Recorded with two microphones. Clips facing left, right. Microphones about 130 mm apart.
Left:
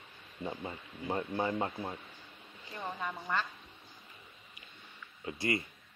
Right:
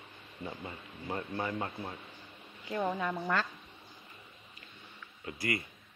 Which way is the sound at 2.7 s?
75° right (ahead or behind).